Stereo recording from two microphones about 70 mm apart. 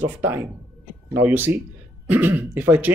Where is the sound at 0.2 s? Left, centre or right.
Right.